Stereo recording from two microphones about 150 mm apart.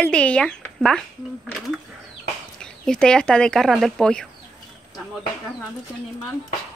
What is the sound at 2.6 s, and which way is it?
Speech, 5° left (ahead or behind).